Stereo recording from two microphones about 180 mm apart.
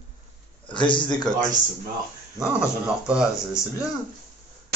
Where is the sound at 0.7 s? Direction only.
25° left (ahead or behind).